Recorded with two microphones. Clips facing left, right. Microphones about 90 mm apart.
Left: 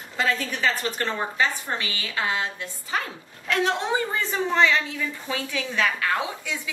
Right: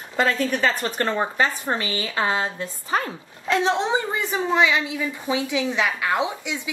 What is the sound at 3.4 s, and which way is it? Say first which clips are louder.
A woman's voice: right 3 dB; 25° right (ahead or behind).